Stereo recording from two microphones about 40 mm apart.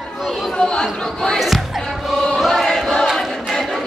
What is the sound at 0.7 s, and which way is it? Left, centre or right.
Chatter, centre.